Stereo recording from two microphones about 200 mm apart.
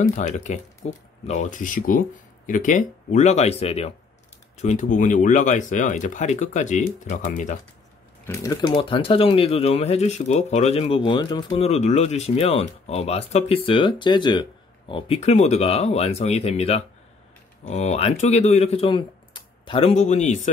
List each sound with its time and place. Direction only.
0.1 s speech: 35° left (ahead or behind)
8.3 s speech: 15° left (ahead or behind)
11.5 s speech: 35° left (ahead or behind)